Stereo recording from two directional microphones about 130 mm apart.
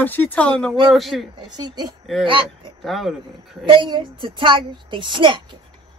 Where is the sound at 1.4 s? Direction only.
35° right (ahead or behind).